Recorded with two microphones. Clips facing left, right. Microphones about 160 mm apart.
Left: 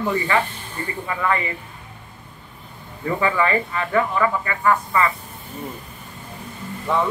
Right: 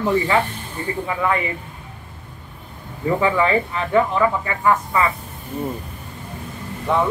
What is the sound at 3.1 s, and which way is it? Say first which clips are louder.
Speech: right 2 dB; 15° right (ahead or behind).